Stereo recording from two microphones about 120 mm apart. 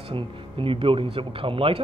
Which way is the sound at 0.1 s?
50° right (ahead or behind).